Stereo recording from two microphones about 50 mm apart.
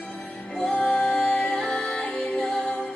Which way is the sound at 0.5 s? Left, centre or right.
Left.